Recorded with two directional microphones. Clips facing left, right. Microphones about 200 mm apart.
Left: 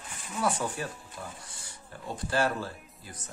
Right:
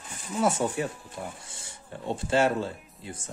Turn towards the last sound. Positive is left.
turn(degrees=-25)  # may be behind; listen again after turning